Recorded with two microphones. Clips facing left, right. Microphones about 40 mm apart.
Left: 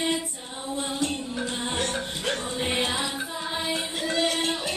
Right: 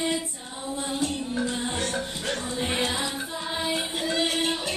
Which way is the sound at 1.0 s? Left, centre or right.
Left.